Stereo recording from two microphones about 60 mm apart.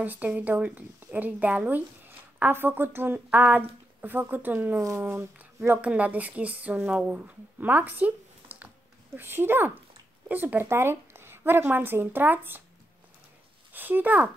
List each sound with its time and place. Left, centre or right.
0.0 s speech: right
2.5 s a woman's voice: right
4.7 s speech: right
5.1 s speech: right
7.2 s a sound: right
9.2 s a woman's voice: right
13.7 s a woman's voice: right